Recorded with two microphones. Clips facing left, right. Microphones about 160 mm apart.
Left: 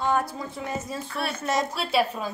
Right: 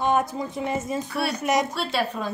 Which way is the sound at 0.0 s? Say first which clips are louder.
Right 3 dB; 20° right (ahead or behind).